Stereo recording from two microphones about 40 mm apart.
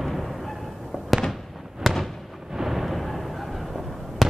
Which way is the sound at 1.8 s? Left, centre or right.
Centre.